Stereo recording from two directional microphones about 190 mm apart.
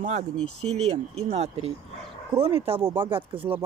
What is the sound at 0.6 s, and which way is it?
Speech, 35° right (ahead or behind).